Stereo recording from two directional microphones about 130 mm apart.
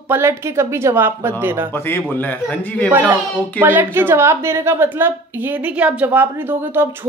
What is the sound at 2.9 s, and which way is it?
A woman's voice, 15° right (ahead or behind).